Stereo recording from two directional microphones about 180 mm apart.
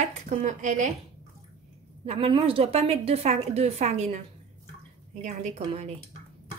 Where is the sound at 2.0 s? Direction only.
35° right (ahead or behind).